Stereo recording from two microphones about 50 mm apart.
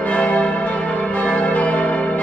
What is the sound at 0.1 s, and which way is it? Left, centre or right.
Change ringing, left.